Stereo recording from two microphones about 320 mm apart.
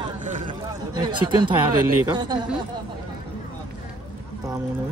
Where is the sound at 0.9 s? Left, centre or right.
Centre.